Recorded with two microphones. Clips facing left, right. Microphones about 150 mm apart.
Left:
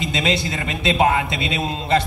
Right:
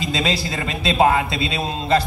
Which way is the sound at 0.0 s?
25° right (ahead or behind).